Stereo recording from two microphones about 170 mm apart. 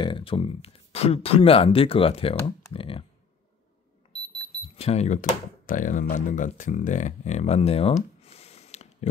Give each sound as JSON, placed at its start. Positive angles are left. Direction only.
{"t": 0.0, "sound": "speech", "side_deg": 30}
{"t": 4.7, "sound": "speech", "side_deg": 40}